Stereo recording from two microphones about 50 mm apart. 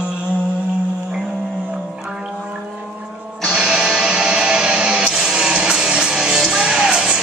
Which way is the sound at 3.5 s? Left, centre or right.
Centre.